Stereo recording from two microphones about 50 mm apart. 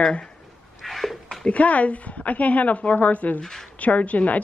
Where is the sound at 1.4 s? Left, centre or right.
Left.